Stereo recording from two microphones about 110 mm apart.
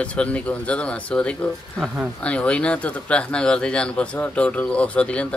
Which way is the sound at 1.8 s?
5° right (ahead or behind).